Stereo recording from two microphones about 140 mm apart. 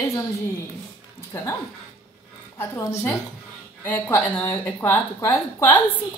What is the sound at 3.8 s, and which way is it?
A woman's voice, 15° left (ahead or behind).